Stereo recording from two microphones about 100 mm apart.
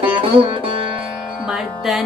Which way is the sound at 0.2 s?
60° right (ahead or behind).